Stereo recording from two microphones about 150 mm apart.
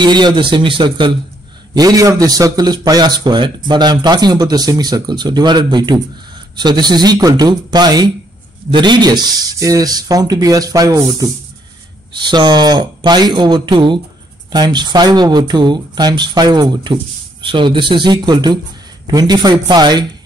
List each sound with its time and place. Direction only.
0.0 s a man's voice: 30° right (ahead or behind)